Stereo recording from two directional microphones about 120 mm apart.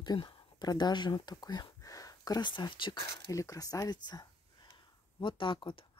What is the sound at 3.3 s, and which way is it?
Speech, 30° left (ahead or behind).